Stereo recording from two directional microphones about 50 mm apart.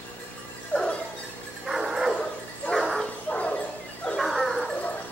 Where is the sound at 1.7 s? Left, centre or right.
Centre.